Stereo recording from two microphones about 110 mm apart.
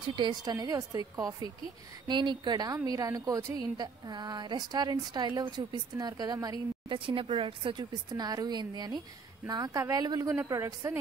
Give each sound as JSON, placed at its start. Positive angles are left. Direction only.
{"t": 0.0, "sound": "a woman's voice", "side_deg": -45}
{"t": 2.0, "sound": "a woman's voice", "side_deg": -45}
{"t": 6.9, "sound": "speech", "side_deg": -50}
{"t": 8.1, "sound": "a woman's voice", "side_deg": -35}